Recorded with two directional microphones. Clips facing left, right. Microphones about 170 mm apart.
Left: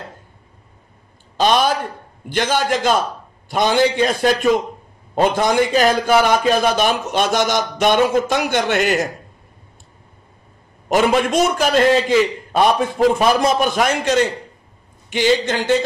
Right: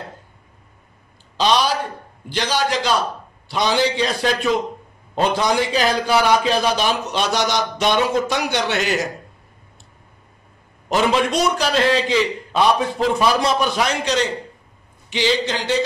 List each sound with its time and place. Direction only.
1.3 s a sound: 50° left (ahead or behind)
2.2 s a man's voice: 50° left (ahead or behind)
10.9 s a man's voice: 50° left (ahead or behind)